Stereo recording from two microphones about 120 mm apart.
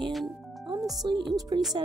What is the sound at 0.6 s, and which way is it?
Music, 35° right (ahead or behind).